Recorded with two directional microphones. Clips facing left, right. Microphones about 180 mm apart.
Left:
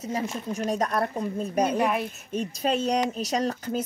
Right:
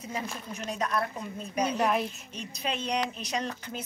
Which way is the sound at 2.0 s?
50° left (ahead or behind).